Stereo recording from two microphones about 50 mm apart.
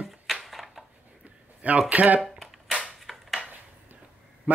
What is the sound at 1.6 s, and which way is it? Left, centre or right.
Speech, right.